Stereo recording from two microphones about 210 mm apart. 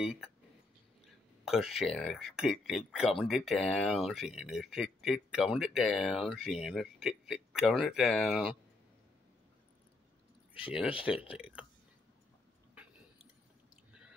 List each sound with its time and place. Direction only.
1.0 s speech: centre (ahead or behind)
10.6 s speech: 5° right (ahead or behind)